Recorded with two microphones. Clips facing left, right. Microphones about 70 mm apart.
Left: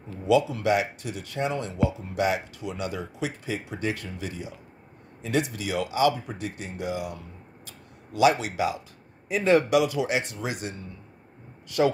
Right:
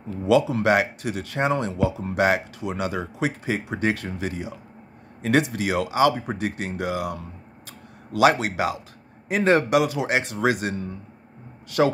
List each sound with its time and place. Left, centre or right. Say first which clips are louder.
0.3 s speech: right 3 dB; right
1.8 s speech: right 4 dB; right
2.8 s speech: right 5 dB; right
10.3 s speech: right 9 dB; right